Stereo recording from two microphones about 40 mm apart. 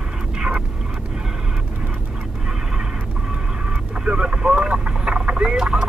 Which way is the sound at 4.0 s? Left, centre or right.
Right.